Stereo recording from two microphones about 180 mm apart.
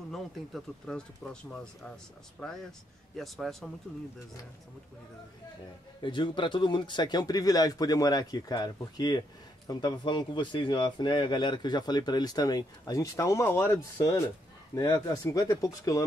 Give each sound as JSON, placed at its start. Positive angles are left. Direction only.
{"t": 0.1, "sound": "speech", "side_deg": 0}
{"t": 3.2, "sound": "speech", "side_deg": 0}
{"t": 6.0, "sound": "speech", "side_deg": 25}